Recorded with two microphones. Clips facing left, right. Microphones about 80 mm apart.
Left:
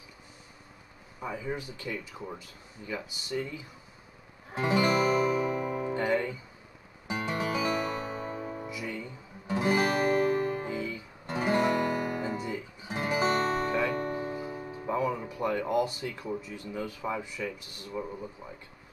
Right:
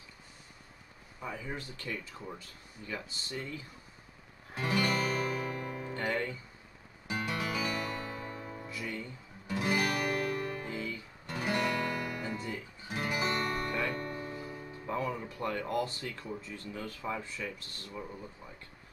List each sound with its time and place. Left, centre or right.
1.2 s speech: centre
4.6 s music: left